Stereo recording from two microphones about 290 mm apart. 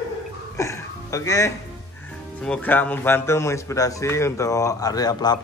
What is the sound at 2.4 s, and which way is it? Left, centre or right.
Speech, centre.